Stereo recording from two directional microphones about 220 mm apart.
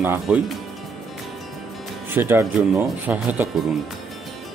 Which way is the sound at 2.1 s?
10° right (ahead or behind).